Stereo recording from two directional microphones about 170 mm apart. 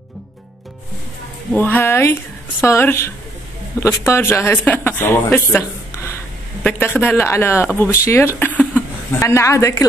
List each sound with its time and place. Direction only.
1.5 s speech: 10° left (ahead or behind)